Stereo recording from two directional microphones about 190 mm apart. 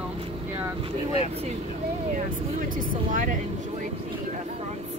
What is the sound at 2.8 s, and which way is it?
Vehicle, 45° right (ahead or behind).